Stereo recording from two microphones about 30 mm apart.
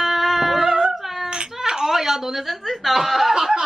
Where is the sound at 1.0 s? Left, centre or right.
Centre.